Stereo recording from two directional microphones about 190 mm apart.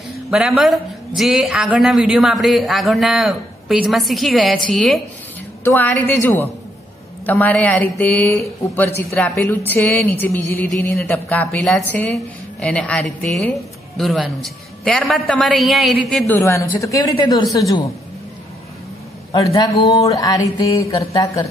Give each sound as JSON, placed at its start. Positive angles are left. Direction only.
{"t": 0.3, "sound": "speech", "side_deg": 0}
{"t": 16.3, "sound": "speech", "side_deg": 15}
{"t": 19.3, "sound": "a sound", "side_deg": 20}